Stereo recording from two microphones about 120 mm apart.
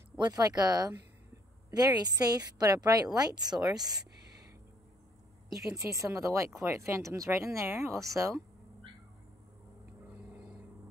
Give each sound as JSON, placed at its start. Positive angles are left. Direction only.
{"t": 0.2, "sound": "speech", "side_deg": -30}
{"t": 5.6, "sound": "speech", "side_deg": -25}